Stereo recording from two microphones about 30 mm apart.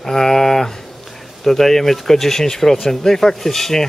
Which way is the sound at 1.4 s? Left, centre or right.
Centre.